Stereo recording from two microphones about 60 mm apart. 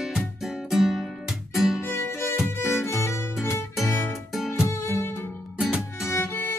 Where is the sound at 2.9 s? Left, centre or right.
Left.